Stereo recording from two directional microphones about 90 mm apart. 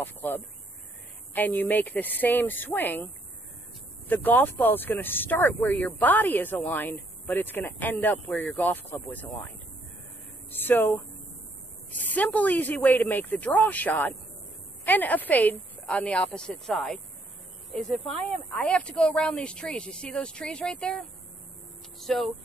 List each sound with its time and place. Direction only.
0.0 s a woman's voice: 20° left (ahead or behind)
4.1 s a woman's voice: 20° left (ahead or behind)
10.5 s speech: 25° left (ahead or behind)
12.0 s a woman's voice: 20° left (ahead or behind); by 22.3 s 5° left (ahead or behind)